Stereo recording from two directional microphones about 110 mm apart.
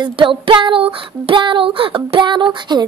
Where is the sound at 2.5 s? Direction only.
40° right (ahead or behind).